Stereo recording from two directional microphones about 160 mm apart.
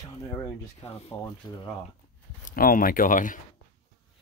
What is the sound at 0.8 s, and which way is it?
Speech, 40° left (ahead or behind).